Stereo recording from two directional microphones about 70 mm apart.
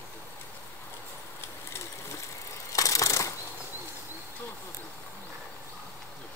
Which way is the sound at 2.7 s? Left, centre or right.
Left.